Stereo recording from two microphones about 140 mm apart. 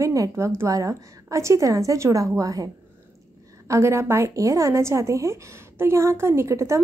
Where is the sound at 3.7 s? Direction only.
20° right (ahead or behind).